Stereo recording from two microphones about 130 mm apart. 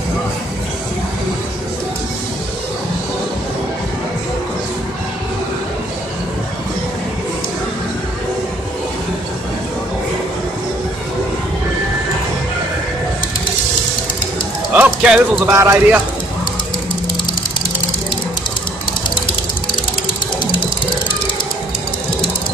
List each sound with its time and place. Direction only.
14.7 s music: 10° right (ahead or behind)
15.5 s speech: 20° right (ahead or behind)